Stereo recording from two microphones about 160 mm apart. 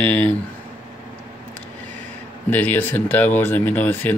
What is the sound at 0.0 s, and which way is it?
Speech, 10° left (ahead or behind).